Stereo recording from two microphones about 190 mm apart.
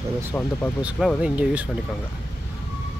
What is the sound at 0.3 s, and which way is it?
Speech, 10° left (ahead or behind).